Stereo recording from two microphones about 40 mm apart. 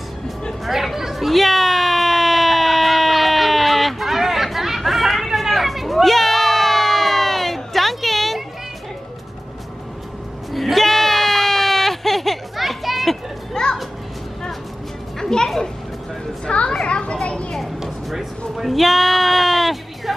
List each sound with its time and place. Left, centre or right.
0.7 s chatter: centre
1.3 s a sound: centre
10.5 s bleat: centre
15.1 s music: centre
16.4 s a sound: left
18.6 s music: centre